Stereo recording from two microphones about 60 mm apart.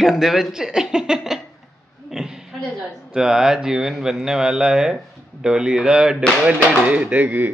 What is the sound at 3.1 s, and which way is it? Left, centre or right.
Speech, centre.